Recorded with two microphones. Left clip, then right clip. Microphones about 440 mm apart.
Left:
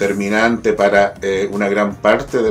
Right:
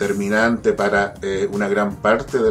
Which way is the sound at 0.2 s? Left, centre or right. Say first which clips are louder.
Left 2 dB; right.